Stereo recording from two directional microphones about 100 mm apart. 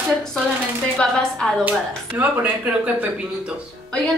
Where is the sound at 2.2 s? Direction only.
15° right (ahead or behind).